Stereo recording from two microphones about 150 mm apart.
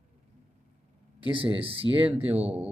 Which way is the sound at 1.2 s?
35° right (ahead or behind).